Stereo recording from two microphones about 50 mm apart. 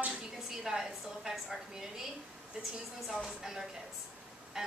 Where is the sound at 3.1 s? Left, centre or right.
Centre.